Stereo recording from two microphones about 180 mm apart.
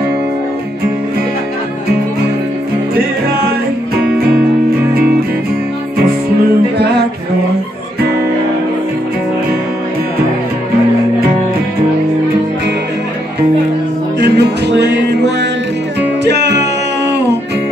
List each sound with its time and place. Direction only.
14.2 s music: 65° right (ahead or behind)